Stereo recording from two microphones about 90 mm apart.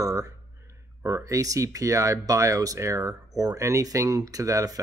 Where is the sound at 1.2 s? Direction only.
40° right (ahead or behind).